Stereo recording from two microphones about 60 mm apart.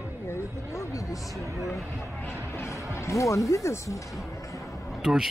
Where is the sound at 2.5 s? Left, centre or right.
Left.